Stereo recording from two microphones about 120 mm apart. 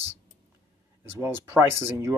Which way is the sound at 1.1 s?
25° right (ahead or behind).